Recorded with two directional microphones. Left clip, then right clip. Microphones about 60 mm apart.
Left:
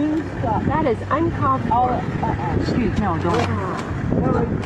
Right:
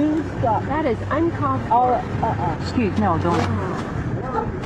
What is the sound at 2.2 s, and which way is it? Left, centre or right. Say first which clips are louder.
Speech: even; right.